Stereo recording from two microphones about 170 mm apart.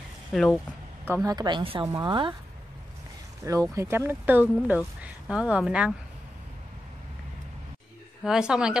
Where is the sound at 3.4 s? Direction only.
20° right (ahead or behind).